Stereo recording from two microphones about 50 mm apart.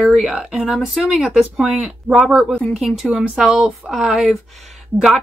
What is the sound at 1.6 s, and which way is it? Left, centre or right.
Speech, centre.